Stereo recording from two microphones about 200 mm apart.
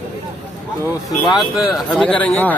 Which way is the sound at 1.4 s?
Centre (ahead or behind).